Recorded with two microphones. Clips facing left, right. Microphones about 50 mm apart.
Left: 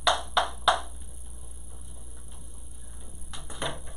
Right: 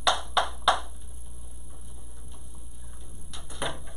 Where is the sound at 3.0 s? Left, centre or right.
Centre.